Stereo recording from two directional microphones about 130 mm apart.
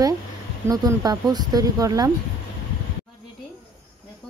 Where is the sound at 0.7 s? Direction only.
30° right (ahead or behind).